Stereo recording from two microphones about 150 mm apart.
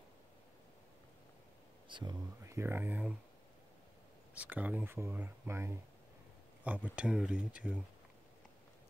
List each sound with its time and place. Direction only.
1.9 s speech: 30° right (ahead or behind)
2.4 s speech: 20° right (ahead or behind)
4.4 s speech: 10° right (ahead or behind)